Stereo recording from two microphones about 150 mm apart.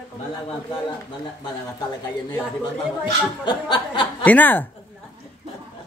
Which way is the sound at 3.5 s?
30° left (ahead or behind).